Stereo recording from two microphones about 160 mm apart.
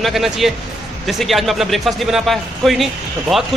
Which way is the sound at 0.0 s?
Centre (ahead or behind).